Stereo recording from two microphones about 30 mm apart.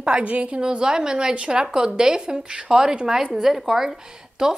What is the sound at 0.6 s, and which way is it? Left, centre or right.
A woman's voice, right.